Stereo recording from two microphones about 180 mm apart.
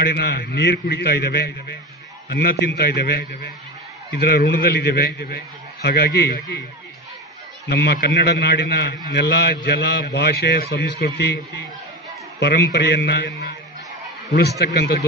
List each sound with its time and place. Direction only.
0.0 s a man's voice: 65° left (ahead or behind)
7.7 s a man's voice: 65° left (ahead or behind)
14.6 s a man's voice: 65° left (ahead or behind)